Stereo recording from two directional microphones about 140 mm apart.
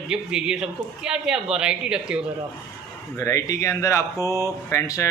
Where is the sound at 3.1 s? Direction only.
25° left (ahead or behind).